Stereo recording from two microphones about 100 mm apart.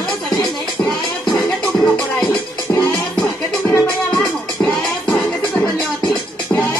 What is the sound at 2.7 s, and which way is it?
Music, 25° left (ahead or behind).